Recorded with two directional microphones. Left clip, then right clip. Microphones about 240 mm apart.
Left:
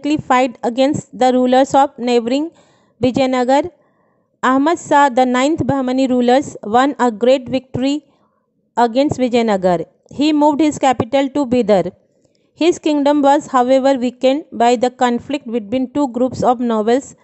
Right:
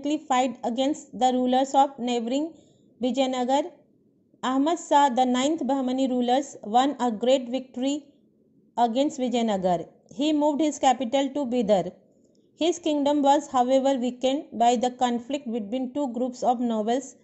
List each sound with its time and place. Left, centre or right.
0.0 s a woman's voice: left
15.2 s a woman's voice: left
15.7 s a woman's voice: left